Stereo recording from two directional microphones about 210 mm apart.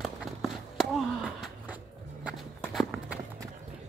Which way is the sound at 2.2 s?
Centre (ahead or behind).